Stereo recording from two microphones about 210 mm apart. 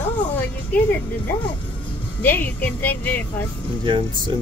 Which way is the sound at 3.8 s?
25° right (ahead or behind).